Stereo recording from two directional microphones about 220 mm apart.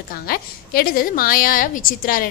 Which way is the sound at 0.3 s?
40° left (ahead or behind).